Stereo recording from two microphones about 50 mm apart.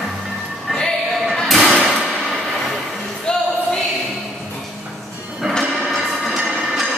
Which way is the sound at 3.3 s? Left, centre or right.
Centre.